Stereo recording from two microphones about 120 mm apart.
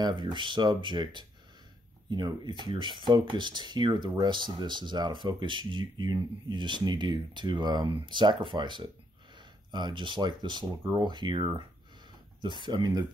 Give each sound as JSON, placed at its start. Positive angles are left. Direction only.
{"t": 0.0, "sound": "speech", "side_deg": -40}